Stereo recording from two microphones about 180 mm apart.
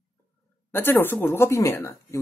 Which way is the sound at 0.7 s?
10° left (ahead or behind).